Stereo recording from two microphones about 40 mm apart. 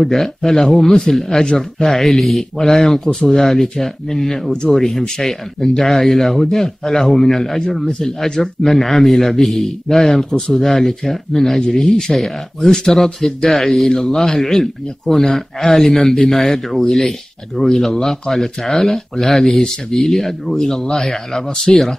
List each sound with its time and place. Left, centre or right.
0.0 s speech: centre
2.6 s speech: centre
17.9 s speech: centre
18.3 s speech: centre